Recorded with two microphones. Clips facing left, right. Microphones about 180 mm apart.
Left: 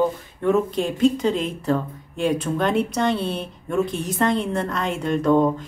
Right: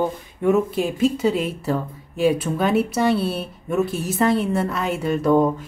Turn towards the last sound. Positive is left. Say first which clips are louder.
# right 1 dB
turn(degrees=-5)  # may be behind; listen again after turning